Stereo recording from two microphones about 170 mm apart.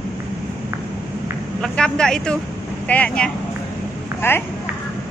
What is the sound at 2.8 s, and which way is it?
Speech, 10° left (ahead or behind).